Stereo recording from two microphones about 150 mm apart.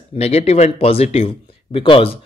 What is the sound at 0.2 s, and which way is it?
Speech, 45° left (ahead or behind).